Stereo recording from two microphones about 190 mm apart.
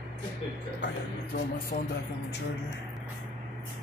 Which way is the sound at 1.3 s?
45° left (ahead or behind).